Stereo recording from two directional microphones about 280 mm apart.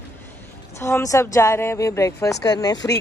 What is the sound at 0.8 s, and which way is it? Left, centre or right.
A woman's voice, centre.